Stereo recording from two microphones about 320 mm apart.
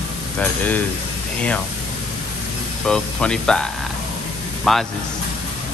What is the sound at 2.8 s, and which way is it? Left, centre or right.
Speech, centre.